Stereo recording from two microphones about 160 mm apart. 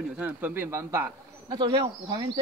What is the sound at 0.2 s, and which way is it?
A man's voice, 15° right (ahead or behind).